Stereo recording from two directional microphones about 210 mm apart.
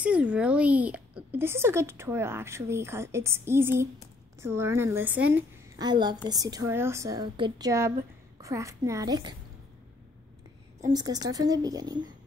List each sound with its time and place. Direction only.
0.0 s speech: 5° right (ahead or behind)
5.8 s a woman's voice: 20° right (ahead or behind)
10.9 s speech: 20° right (ahead or behind)